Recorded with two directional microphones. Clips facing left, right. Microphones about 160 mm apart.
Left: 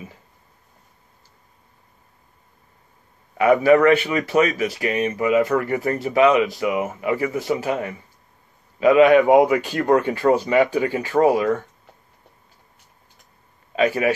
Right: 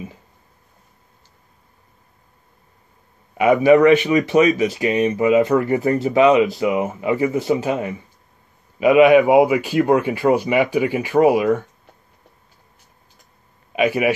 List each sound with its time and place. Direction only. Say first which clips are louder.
3.3 s a man's voice: right 2 dB; 20° right (ahead or behind)
13.7 s a man's voice: right 1 dB; 15° right (ahead or behind)